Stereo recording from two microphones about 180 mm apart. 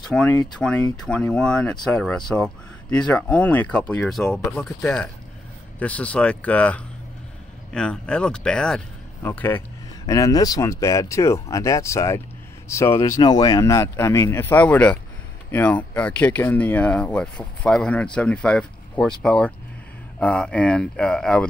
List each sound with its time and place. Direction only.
0.1 s speech: 5° left (ahead or behind)